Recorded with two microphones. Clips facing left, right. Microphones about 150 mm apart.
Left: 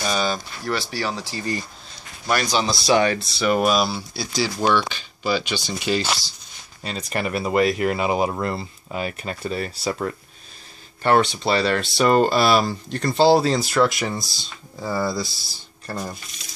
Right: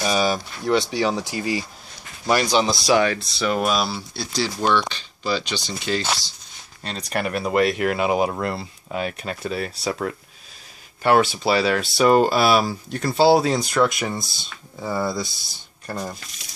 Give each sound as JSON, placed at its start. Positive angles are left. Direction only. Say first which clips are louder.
{"t": 0.0, "sound": "a sound", "louder": "right 2 dB", "side_deg": -10}
{"t": 0.7, "sound": "speech", "louder": "right 6 dB", "side_deg": -20}
{"t": 2.2, "sound": "speech", "louder": "right 3 dB", "side_deg": -25}
{"t": 2.9, "sound": "speech", "louder": "left 2 dB", "side_deg": 0}
{"t": 6.8, "sound": "speech", "louder": "even", "side_deg": 5}